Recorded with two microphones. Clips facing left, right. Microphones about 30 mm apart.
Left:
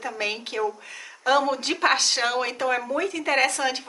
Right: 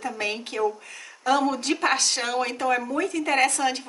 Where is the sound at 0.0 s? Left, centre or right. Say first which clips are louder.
Even; centre.